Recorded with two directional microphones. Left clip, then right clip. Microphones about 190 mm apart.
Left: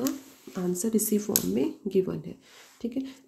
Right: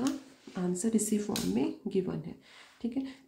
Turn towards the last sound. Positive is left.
turn(degrees=25)  # may be behind; listen again after turning